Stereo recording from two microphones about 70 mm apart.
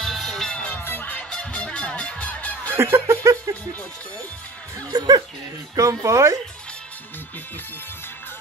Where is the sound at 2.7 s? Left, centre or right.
Right.